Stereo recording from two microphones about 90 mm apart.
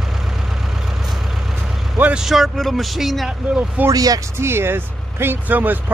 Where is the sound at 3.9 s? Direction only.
45° right (ahead or behind).